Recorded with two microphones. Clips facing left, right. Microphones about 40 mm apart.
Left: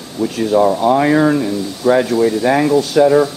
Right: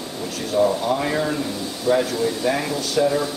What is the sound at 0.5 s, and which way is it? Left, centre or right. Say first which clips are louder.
Speech: left 7 dB; left.